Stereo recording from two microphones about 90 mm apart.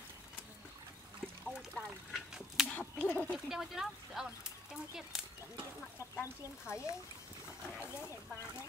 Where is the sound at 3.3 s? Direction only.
5° right (ahead or behind).